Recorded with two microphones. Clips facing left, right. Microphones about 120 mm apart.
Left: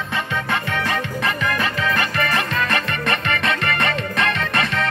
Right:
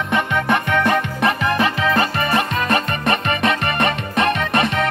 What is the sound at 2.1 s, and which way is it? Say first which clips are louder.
Music: right 2 dB; 20° right (ahead or behind).